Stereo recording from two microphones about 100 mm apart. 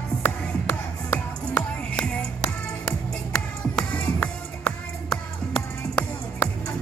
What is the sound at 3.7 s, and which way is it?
Music, 10° left (ahead or behind).